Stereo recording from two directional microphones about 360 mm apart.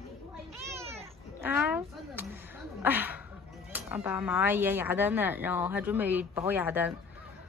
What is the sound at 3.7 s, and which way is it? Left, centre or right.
Speech, centre.